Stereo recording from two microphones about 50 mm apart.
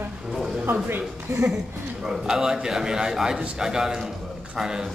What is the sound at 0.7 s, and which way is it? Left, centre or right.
Speech, right.